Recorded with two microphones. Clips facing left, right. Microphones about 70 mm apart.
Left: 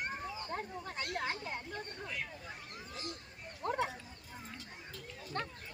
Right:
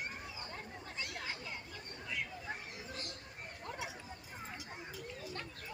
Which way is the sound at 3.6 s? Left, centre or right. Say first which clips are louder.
Left 10 dB; left.